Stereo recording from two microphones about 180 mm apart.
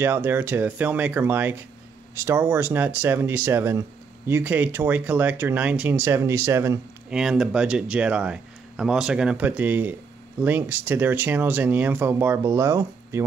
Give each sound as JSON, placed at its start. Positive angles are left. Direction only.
{"t": 0.0, "sound": "speech", "side_deg": -10}
{"t": 7.2, "sound": "speech", "side_deg": -5}